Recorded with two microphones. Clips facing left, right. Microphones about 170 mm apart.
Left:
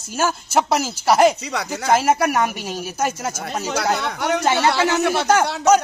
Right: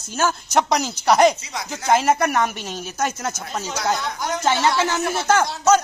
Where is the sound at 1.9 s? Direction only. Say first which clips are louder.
Left 1 dB; 5° left (ahead or behind).